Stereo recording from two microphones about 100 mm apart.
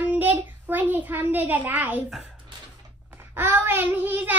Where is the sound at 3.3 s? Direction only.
25° right (ahead or behind).